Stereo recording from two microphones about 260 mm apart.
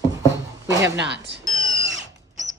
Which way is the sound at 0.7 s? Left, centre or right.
Centre.